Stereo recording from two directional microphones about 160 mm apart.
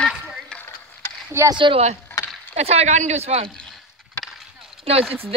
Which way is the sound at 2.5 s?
40° right (ahead or behind).